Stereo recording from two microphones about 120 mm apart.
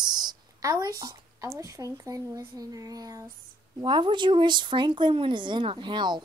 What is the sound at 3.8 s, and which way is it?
Speech, 40° right (ahead or behind).